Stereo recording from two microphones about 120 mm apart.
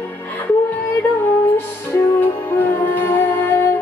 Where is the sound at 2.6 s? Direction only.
15° left (ahead or behind).